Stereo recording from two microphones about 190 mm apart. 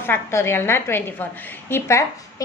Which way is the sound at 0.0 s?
10° left (ahead or behind).